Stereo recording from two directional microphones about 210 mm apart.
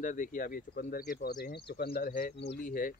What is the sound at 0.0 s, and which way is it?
Speech, 40° left (ahead or behind).